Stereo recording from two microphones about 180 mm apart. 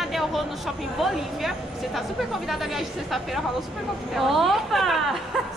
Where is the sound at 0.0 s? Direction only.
Centre (ahead or behind).